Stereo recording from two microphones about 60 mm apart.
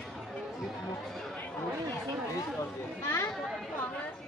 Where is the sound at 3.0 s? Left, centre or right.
Left.